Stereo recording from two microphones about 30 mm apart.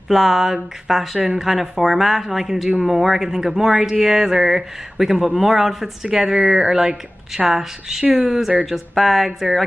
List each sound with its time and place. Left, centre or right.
0.1 s speech: centre
8.9 s speech: centre